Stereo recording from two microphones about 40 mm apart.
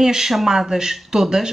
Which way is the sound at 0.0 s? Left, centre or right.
Centre.